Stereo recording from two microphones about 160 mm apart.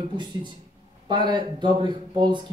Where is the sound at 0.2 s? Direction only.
30° right (ahead or behind).